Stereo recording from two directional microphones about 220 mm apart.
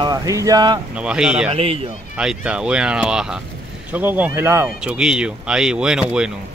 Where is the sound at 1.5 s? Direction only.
25° right (ahead or behind).